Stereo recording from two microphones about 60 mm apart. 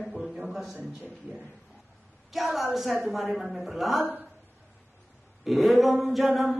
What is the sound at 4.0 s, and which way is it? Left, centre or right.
Speech, right.